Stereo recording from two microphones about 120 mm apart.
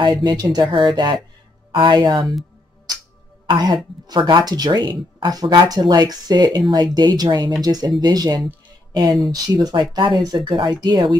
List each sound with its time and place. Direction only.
0.0 s speech: 40° right (ahead or behind)
3.4 s speech: 40° right (ahead or behind)